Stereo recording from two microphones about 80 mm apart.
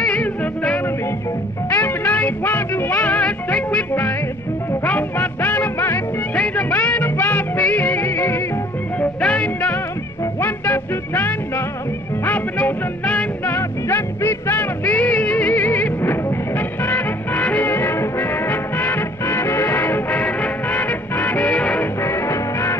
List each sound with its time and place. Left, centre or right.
0.0 s music: centre
2.0 s music: left
9.0 s music: centre
13.5 s music: left
14.9 s music: centre
22.0 s music: left